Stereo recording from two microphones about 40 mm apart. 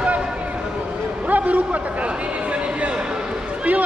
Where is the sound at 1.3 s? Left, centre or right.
Right.